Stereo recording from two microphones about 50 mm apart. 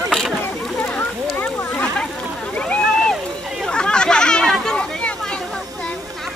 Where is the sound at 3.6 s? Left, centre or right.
Centre.